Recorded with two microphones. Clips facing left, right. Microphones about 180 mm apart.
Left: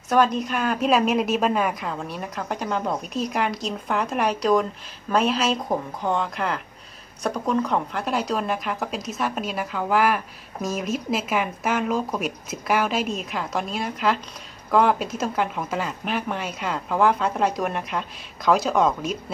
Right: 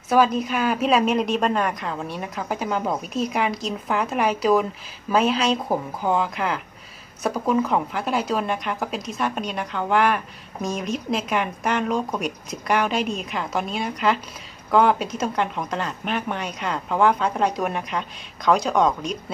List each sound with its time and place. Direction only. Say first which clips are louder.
0.1 s speech: right 1 dB; 5° right (ahead or behind)